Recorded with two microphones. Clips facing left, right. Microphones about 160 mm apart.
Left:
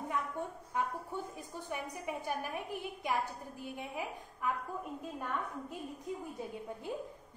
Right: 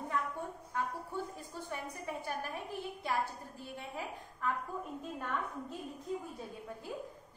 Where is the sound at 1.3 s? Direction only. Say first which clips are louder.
Left 1 dB; 15° left (ahead or behind).